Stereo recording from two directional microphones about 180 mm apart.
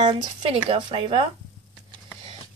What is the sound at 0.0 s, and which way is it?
Speech, 25° right (ahead or behind).